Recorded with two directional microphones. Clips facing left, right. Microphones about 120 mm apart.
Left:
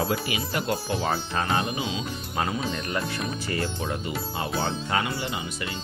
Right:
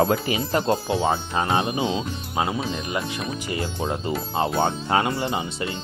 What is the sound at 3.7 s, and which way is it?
Speech, 30° right (ahead or behind).